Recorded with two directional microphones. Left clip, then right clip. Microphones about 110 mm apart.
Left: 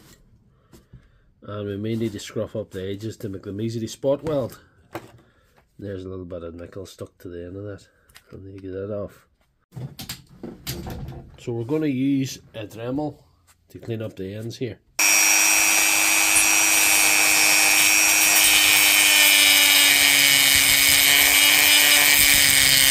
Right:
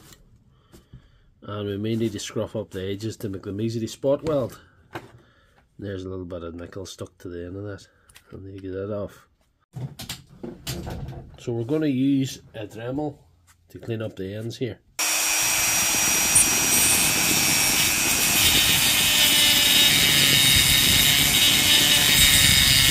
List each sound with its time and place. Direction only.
1.4 s speech: 10° right (ahead or behind)
3.6 s speech: centre (ahead or behind)
5.8 s speech: 15° right (ahead or behind)
11.3 s speech: 10° right (ahead or behind)
12.5 s speech: 30° left (ahead or behind)
13.7 s speech: 5° left (ahead or behind)
15.0 s wood: 30° left (ahead or behind)